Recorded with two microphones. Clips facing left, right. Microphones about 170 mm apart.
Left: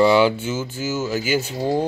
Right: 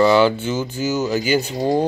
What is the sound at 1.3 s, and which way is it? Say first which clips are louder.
Speech: right 3 dB; 15° right (ahead or behind).